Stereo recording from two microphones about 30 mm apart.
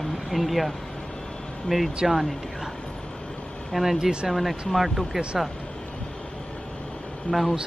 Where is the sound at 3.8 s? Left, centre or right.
Centre.